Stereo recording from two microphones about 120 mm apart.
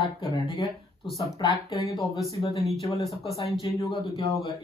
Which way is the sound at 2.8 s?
50° left (ahead or behind).